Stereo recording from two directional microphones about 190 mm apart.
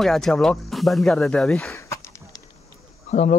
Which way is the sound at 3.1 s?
35° left (ahead or behind).